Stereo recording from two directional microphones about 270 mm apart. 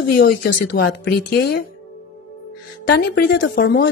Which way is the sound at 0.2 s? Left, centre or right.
Left.